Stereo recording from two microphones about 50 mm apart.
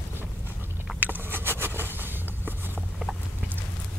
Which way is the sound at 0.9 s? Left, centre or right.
Right.